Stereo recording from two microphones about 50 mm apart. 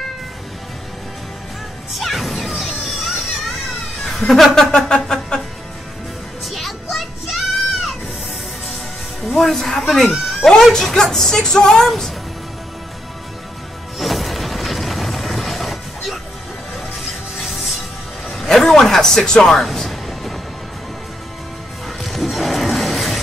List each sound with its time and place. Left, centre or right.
2.0 s music: centre
4.7 s speech: centre
6.4 s music: centre
9.2 s speech: centre
13.9 s music: centre
17.4 s music: centre
18.3 s speech: centre
19.6 s music: centre
21.8 s music: centre